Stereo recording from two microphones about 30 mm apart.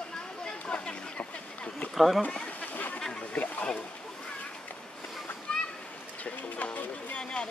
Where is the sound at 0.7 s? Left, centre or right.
Left.